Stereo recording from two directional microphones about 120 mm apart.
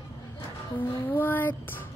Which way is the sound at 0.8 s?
15° left (ahead or behind).